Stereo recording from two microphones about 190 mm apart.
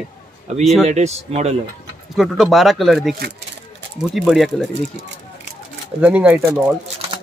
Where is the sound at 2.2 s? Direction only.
Centre (ahead or behind).